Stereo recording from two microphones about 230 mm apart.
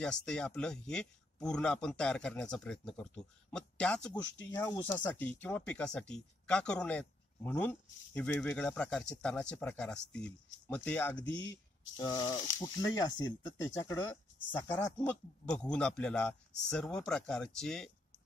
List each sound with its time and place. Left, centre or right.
0.0 s speech: centre
4.6 s speech: centre